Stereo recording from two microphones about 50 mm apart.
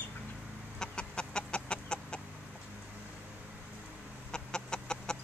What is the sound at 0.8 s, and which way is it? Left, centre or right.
Chicken, centre.